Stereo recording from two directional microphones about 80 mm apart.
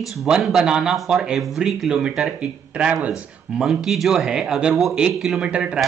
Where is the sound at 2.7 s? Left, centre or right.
Centre.